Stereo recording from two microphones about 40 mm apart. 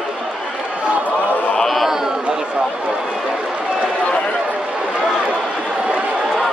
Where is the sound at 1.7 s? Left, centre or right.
Centre.